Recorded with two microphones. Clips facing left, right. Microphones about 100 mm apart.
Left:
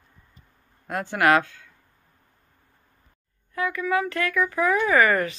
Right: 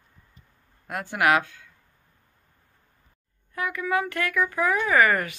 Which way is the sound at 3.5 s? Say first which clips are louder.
Left 2 dB; 20° right (ahead or behind).